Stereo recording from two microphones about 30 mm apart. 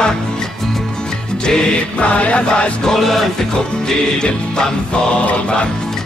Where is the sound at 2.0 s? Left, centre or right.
Left.